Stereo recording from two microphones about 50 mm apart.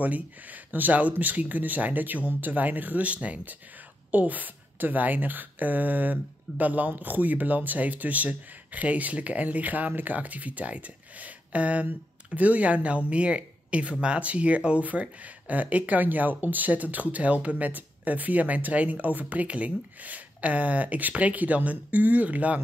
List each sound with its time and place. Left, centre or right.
0.0 s speech: right